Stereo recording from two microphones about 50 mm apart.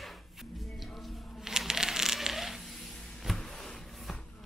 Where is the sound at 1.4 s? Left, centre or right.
Centre.